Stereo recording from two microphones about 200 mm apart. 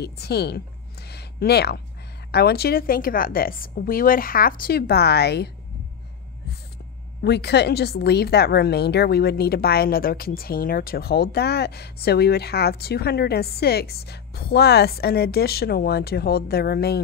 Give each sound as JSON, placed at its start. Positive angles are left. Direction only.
{"t": 0.0, "sound": "speech", "side_deg": 55}
{"t": 1.0, "sound": "a sound", "side_deg": 55}
{"t": 2.3, "sound": "a woman's voice", "side_deg": 55}
{"t": 7.2, "sound": "a woman's voice", "side_deg": 55}